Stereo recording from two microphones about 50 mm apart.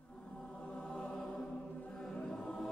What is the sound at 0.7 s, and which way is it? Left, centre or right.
Music, centre.